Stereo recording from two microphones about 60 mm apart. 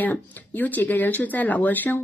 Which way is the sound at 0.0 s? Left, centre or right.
Left.